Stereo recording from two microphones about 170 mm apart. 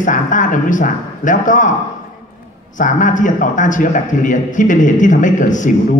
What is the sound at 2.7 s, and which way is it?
A man's voice, 50° left (ahead or behind).